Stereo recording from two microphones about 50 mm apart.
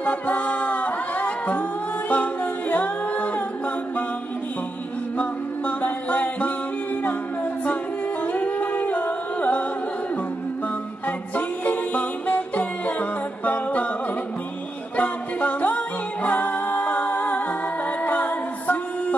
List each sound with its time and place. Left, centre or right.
0.0 s music: left
5.1 s music: left
8.2 s music: left
11.1 s music: left
15.0 s music: left